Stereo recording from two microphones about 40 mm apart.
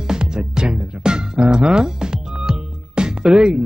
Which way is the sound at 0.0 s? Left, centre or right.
Centre.